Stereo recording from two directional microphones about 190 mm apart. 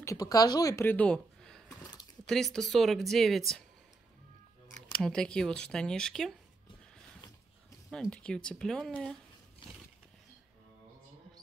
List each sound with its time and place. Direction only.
0.0 s speech: 15° left (ahead or behind); by 3.6 s centre (ahead or behind)
4.9 s speech: 5° left (ahead or behind)
7.9 s speech: 5° left (ahead or behind)
9.6 s roaring cats: 25° left (ahead or behind)